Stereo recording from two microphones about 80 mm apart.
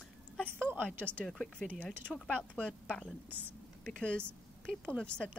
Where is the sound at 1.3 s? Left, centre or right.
Centre.